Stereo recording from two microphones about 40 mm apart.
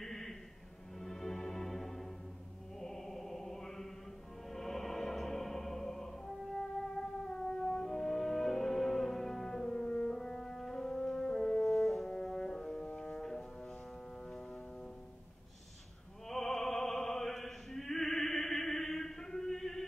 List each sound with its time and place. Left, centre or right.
0.0 s a sound: centre
0.9 s music: centre
2.8 s chant: centre
4.5 s music: centre
10.1 s french horn: centre
12.1 s brass instrument: centre
16.3 s opera: centre